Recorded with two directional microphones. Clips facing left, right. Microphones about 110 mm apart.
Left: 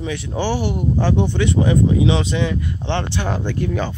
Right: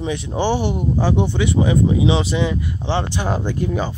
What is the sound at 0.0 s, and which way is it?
Speech, 20° right (ahead or behind).